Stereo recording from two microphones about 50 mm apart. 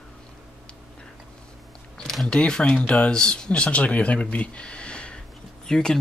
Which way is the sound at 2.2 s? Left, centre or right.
Centre.